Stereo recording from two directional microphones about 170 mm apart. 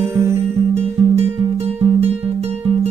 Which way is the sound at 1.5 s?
35° right (ahead or behind).